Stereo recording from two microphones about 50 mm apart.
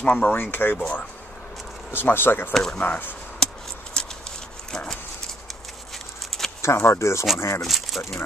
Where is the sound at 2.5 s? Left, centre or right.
Centre.